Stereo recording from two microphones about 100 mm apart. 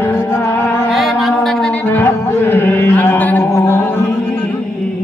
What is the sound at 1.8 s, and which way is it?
Music, 20° left (ahead or behind).